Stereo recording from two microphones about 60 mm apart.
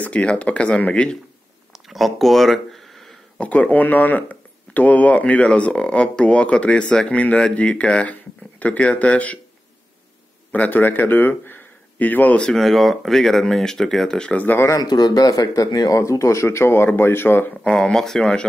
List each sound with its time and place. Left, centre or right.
0.0 s speech: left
1.7 s a sound: centre
3.3 s speech: left
10.5 s speech: left
12.4 s speech: centre
14.8 s speech: left
16.0 s speech: left
17.6 s speech: centre